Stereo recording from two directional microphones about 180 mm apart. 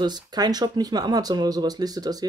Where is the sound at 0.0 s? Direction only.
25° right (ahead or behind).